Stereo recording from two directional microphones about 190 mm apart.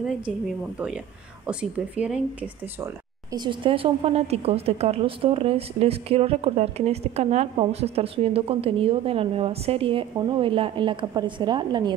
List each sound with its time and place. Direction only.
0.7 s a woman's voice: 5° right (ahead or behind)
2.8 s speech: 20° right (ahead or behind)